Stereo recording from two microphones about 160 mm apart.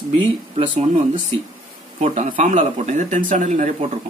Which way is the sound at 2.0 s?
45° right (ahead or behind).